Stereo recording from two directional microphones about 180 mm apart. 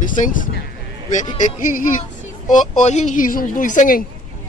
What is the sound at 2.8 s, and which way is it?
A woman's voice, 40° left (ahead or behind).